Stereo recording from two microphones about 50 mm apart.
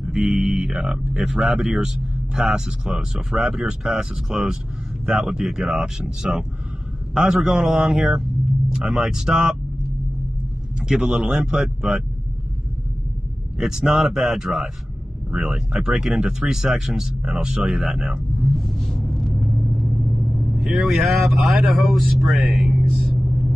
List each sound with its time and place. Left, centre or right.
0.0 s speech: centre
10.8 s speech: centre
13.6 s speech: centre
19.4 s vehicle: centre
21.8 s speech: centre
22.3 s a sound: centre